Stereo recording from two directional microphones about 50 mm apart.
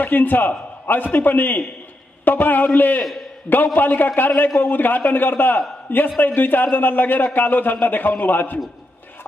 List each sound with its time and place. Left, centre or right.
0.0 s a man's voice: left